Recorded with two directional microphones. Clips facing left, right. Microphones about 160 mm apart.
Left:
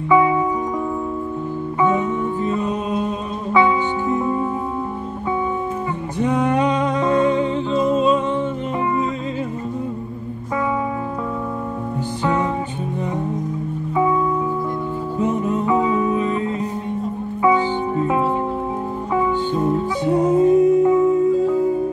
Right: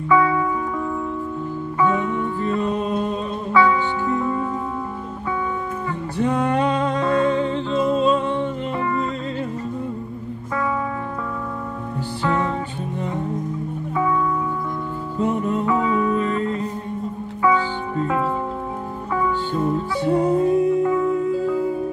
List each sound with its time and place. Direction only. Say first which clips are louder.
0.1 s music: left 2 dB; 20° left (ahead or behind)
1.8 s music: left 2 dB; 20° left (ahead or behind)
2.4 s music: even; 5° left (ahead or behind)
3.5 s music: left 1 dB; 20° left (ahead or behind)
6.1 s music: left 2 dB; 15° left (ahead or behind)
13.9 s music: left 3 dB; 20° left (ahead or behind)
15.6 s music: left 3 dB; 20° left (ahead or behind)